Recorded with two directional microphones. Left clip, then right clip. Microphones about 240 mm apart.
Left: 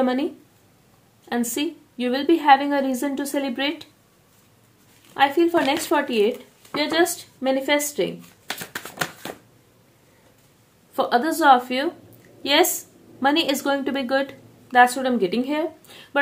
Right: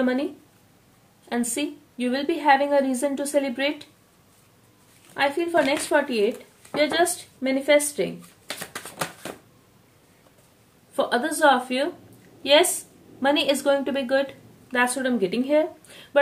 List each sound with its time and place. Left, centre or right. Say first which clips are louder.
0.0 s speech: left 2 dB; left
1.3 s speech: left 2 dB; left
5.1 s speech: left 3 dB; left
11.0 s a woman's voice: left 1 dB; left